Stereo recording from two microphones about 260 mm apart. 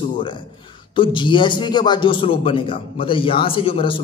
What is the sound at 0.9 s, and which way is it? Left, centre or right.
A man's voice, centre.